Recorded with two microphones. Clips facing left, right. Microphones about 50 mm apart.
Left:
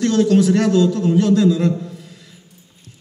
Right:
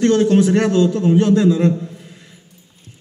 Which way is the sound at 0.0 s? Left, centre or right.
Right.